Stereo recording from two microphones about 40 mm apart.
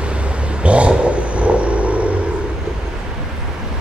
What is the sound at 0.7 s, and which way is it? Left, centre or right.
Vehicle, right.